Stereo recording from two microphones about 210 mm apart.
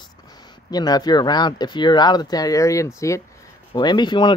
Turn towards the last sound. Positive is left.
turn(degrees=20)  # may be behind; listen again after turning